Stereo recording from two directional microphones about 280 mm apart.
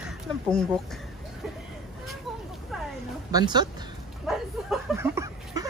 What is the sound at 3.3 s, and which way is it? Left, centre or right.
Speech, centre.